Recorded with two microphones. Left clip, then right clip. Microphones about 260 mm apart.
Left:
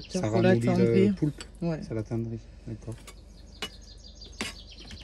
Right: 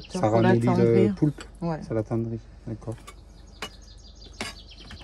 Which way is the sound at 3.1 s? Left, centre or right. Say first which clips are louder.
Right 3 dB; centre.